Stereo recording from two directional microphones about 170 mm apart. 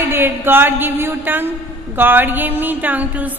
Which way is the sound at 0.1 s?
10° right (ahead or behind).